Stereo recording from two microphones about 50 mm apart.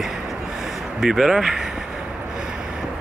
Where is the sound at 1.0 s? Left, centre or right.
Centre.